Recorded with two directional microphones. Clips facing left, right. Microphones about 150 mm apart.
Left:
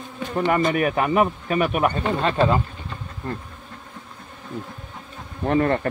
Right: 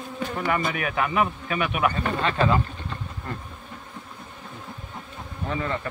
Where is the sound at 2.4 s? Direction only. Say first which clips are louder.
Left 2 dB; 10° left (ahead or behind).